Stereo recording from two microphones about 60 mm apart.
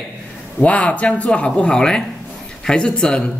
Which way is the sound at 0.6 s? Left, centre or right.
Left.